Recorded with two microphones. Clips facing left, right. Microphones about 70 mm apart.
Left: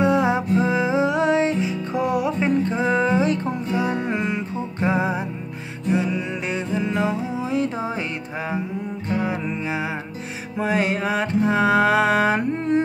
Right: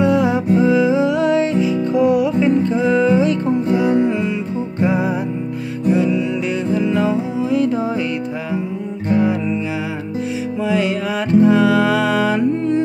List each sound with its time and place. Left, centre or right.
0.0 s music: left
4.0 s music: left
4.8 s music: left
10.6 s music: left